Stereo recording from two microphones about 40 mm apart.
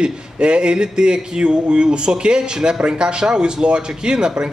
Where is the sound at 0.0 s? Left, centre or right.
Right.